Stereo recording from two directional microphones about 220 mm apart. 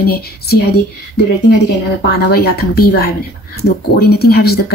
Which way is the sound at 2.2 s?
45° left (ahead or behind).